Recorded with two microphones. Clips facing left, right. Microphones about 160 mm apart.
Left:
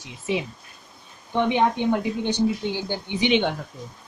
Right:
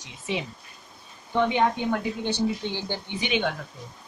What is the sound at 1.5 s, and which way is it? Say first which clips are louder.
A woman's voice: left 3 dB; 20° left (ahead or behind).